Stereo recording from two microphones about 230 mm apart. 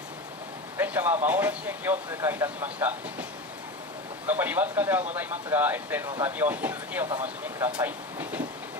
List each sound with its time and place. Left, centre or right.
0.7 s speech: centre
4.3 s speech: centre